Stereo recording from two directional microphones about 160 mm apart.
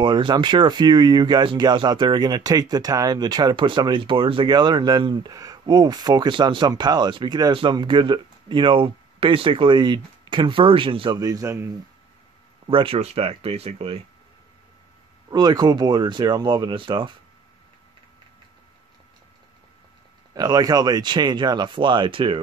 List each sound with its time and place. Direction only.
0.0 s speech: 30° right (ahead or behind)
12.6 s speech: 35° right (ahead or behind)
15.2 s speech: 25° right (ahead or behind)
20.3 s speech: 25° right (ahead or behind)